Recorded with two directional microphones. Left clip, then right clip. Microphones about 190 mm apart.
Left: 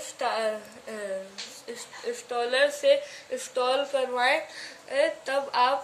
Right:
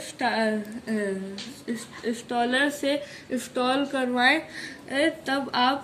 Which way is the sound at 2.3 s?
25° right (ahead or behind).